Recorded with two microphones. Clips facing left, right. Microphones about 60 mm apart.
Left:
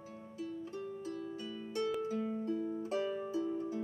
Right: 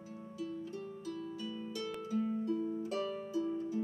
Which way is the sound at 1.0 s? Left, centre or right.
Left.